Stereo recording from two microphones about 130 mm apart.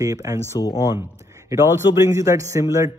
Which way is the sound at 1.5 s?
20° right (ahead or behind).